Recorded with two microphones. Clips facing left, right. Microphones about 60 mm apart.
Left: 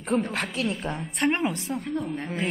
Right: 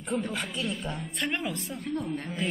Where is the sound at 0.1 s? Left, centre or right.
Left.